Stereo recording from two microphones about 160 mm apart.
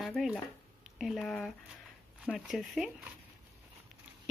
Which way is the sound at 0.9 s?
Centre (ahead or behind).